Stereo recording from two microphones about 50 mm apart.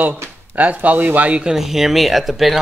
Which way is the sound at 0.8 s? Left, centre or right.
Right.